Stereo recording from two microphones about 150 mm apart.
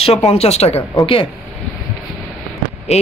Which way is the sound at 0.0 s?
40° left (ahead or behind).